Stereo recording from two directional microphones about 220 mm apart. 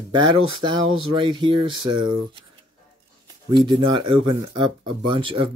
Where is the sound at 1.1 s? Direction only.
20° right (ahead or behind).